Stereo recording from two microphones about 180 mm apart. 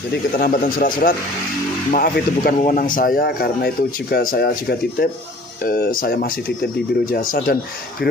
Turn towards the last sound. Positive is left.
turn(degrees=55)  # may be behind; listen again after turning